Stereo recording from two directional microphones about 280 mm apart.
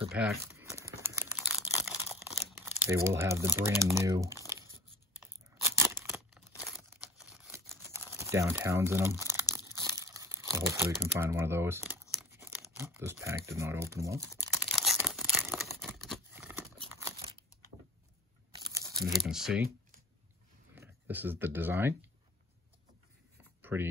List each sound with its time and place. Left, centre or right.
0.1 s crumpling: centre
2.6 s speech: centre
5.2 s a sound: centre
5.8 s tearing: centre
10.9 s speech: centre
14.4 s tearing: centre
18.5 s crumpling: centre
20.7 s speech: centre
23.6 s a sound: centre